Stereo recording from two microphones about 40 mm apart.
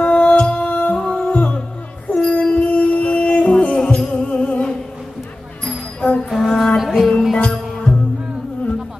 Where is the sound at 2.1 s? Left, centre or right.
Left.